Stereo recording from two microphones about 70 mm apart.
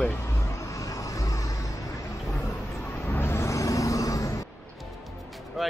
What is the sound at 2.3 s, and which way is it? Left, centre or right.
Vehicle, left.